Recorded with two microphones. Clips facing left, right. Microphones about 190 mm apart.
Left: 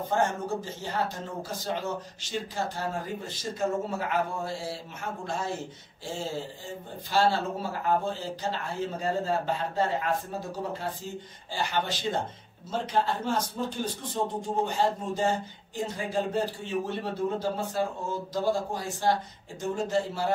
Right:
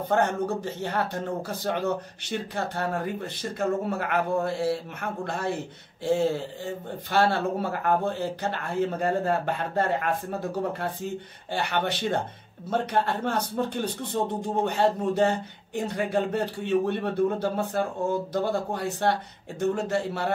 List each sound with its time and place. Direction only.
0.1 s speech: 60° right (ahead or behind)